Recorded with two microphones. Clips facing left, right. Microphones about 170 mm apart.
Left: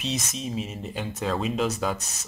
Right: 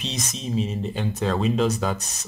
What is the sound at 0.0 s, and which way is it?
Speech, 5° left (ahead or behind).